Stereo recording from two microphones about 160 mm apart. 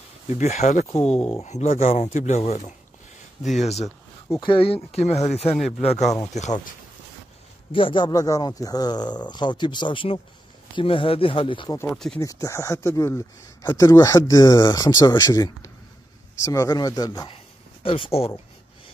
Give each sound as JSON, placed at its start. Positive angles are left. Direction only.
{"t": 0.3, "sound": "speech", "side_deg": 45}
{"t": 7.7, "sound": "speech", "side_deg": 30}
{"t": 11.8, "sound": "speech", "side_deg": 5}
{"t": 12.2, "sound": "speech", "side_deg": 20}